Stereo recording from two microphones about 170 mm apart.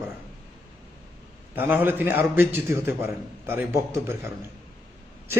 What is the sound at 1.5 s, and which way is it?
A man's voice, 10° right (ahead or behind).